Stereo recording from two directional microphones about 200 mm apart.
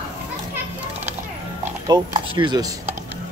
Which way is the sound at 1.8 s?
20° right (ahead or behind).